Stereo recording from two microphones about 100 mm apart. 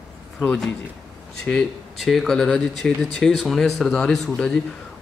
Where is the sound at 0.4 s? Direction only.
5° left (ahead or behind).